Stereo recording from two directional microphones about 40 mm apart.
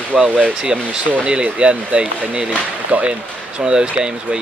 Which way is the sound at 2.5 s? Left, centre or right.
Right.